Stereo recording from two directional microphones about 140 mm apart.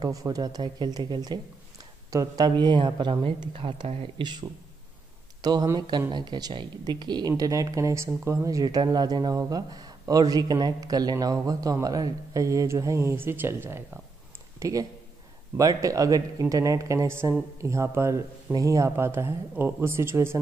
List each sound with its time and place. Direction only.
0.0 s speech: 25° right (ahead or behind)